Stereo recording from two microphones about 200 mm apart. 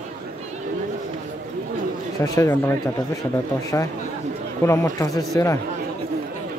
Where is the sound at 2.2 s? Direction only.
15° left (ahead or behind).